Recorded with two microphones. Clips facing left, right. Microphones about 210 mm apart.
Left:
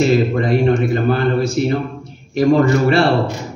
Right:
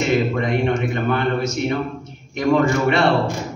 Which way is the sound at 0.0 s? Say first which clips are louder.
Left 4 dB; 35° left (ahead or behind).